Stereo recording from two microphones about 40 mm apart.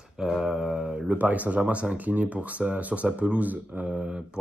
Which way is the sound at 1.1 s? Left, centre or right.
Right.